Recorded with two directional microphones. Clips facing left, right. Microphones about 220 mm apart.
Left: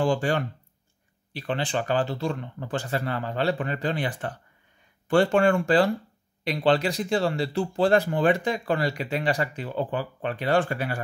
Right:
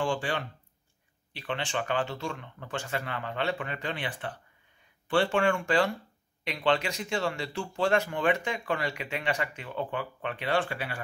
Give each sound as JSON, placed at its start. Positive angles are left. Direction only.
{"t": 0.0, "sound": "speech", "side_deg": 40}